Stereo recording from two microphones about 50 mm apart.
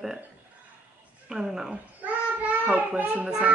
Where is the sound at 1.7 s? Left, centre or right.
Right.